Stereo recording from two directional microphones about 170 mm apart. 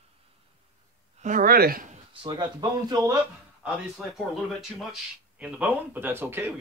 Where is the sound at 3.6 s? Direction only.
Centre (ahead or behind).